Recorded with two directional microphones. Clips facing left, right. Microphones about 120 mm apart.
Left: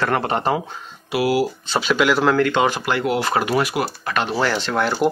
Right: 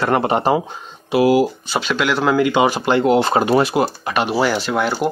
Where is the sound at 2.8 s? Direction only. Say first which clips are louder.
Right 6 dB; 25° right (ahead or behind).